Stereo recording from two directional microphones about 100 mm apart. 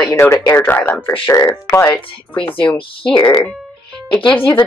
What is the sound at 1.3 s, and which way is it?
Speech, 35° left (ahead or behind).